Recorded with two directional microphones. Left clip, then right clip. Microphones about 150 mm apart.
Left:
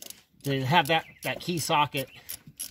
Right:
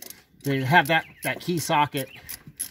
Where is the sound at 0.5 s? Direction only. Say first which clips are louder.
Right 4 dB; 30° left (ahead or behind).